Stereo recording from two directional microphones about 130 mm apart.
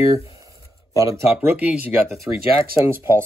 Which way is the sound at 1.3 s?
10° right (ahead or behind).